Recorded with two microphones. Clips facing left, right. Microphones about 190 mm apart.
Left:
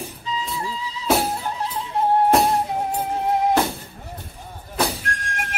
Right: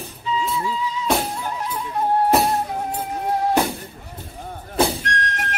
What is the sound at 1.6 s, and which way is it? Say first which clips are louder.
Neigh: left 1 dB; 25° left (ahead or behind).